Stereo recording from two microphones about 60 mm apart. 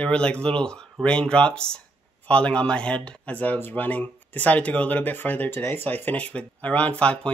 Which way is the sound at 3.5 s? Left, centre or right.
Left.